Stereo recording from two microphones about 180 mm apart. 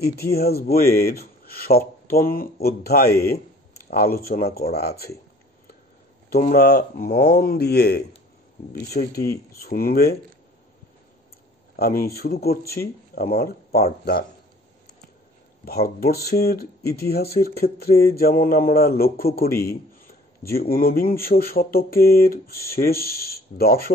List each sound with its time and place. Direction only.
0.0 s speech: 60° left (ahead or behind)
6.3 s speech: 55° left (ahead or behind)
9.0 s speech: 45° left (ahead or behind)
9.5 s speech: 55° left (ahead or behind)
11.8 s speech: 60° left (ahead or behind)
15.6 s speech: 60° left (ahead or behind)